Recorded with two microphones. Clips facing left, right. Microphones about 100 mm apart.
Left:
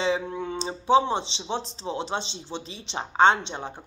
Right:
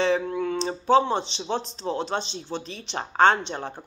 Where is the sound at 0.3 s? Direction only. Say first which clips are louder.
Right 4 dB; 25° left (ahead or behind).